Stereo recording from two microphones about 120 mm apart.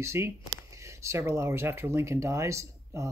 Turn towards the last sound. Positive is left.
turn(degrees=-25)  # may be behind; listen again after turning